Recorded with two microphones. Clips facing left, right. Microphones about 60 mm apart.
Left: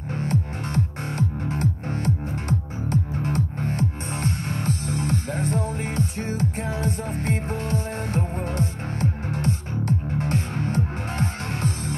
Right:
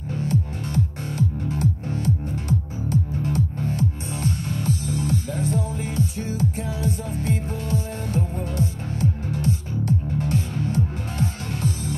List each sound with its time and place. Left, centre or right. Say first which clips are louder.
0.1 s music: right 1 dB; left